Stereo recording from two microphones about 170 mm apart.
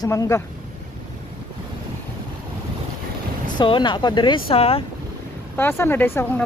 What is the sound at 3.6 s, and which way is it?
Speech, 25° left (ahead or behind).